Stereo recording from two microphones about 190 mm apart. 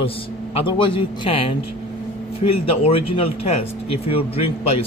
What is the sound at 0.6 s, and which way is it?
A man's voice, 25° left (ahead or behind).